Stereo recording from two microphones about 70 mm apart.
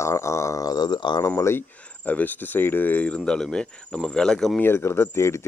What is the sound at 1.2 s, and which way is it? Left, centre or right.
Speech, left.